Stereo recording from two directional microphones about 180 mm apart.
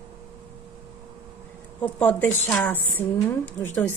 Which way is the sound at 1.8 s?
10° left (ahead or behind).